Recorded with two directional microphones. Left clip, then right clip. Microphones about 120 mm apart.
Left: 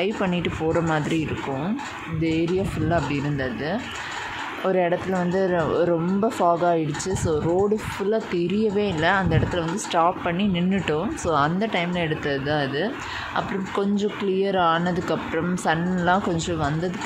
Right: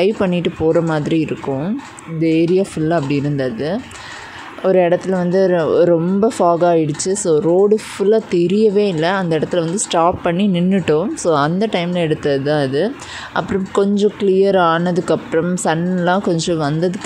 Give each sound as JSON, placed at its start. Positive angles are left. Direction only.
{"t": 0.0, "sound": "speech", "side_deg": -50}
{"t": 2.2, "sound": "speech", "side_deg": -45}